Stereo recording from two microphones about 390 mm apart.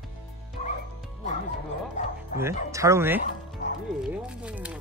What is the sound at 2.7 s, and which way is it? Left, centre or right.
Speech, centre.